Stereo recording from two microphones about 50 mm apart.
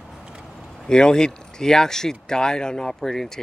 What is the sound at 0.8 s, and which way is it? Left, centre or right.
Speech, centre.